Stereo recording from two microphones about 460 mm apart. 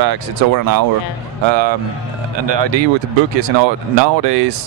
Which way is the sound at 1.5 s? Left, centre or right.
Right.